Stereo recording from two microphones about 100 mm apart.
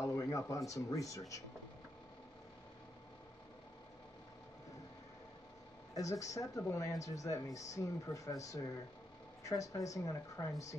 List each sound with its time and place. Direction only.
0.0 s a sound: 30° left (ahead or behind)
0.7 s speech: 35° left (ahead or behind)
5.9 s speech: 35° left (ahead or behind)